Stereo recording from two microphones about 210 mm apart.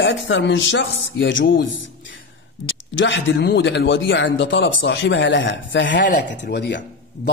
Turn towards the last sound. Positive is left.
turn(degrees=55)  # may be behind; listen again after turning